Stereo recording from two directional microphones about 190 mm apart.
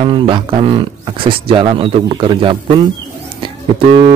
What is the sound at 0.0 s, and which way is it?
Speech, 25° right (ahead or behind).